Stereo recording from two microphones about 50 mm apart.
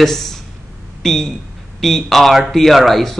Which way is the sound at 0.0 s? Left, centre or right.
Centre.